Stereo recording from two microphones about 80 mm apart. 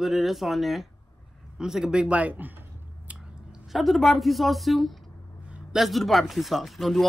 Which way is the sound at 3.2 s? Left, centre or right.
Centre.